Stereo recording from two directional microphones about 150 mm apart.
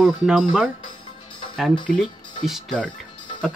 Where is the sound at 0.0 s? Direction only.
Centre (ahead or behind).